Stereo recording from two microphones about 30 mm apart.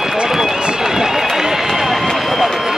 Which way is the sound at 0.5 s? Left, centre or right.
Right.